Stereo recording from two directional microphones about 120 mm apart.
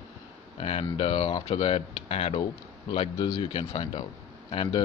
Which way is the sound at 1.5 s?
50° left (ahead or behind).